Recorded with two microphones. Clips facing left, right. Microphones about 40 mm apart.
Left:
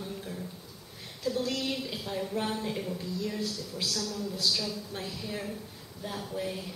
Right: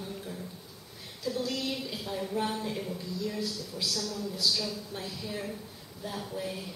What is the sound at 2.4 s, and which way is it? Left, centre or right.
Speech, centre.